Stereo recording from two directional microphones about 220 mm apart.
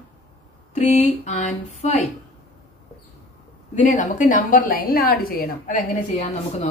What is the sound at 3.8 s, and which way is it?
A woman's voice, 35° left (ahead or behind).